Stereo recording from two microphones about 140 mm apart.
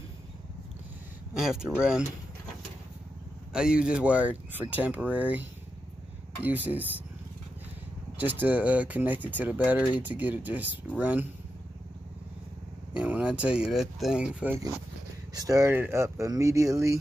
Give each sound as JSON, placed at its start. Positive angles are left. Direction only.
{"t": 1.3, "sound": "speech", "side_deg": -5}
{"t": 3.5, "sound": "speech", "side_deg": -5}
{"t": 8.2, "sound": "speech", "side_deg": -10}
{"t": 12.9, "sound": "speech", "side_deg": -10}
{"t": 15.3, "sound": "speech", "side_deg": -25}